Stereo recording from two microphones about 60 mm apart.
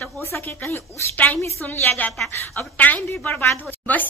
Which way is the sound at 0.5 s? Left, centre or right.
Left.